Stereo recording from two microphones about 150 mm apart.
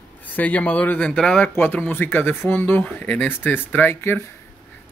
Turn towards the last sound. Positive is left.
turn(degrees=15)  # may be behind; listen again after turning